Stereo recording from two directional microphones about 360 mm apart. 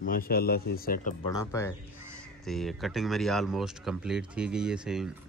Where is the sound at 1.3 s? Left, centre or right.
Centre.